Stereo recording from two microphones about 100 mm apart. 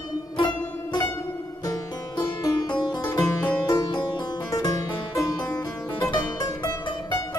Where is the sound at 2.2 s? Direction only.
50° left (ahead or behind).